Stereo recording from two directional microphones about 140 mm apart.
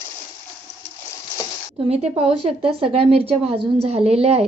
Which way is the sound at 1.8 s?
45° right (ahead or behind).